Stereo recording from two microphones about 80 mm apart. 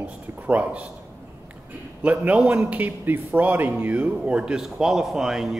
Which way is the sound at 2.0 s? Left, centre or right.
Centre.